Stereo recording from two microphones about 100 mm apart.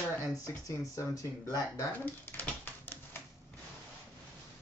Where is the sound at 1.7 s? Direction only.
20° left (ahead or behind).